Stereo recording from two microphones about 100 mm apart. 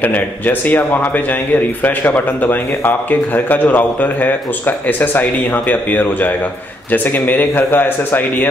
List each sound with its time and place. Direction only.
0.0 s a man's voice: 15° left (ahead or behind)